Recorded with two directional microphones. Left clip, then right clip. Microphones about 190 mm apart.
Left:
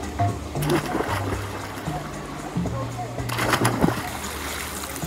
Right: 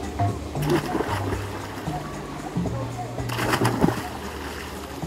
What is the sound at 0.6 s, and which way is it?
Sewing machine, 30° left (ahead or behind).